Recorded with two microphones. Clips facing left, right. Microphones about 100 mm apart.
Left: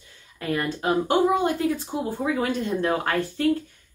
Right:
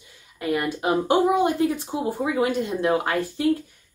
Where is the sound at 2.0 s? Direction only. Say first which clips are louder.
Right 3 dB; 15° right (ahead or behind).